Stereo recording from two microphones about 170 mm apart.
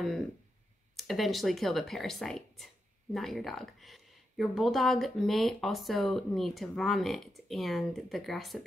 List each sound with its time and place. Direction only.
0.9 s speech: centre (ahead or behind)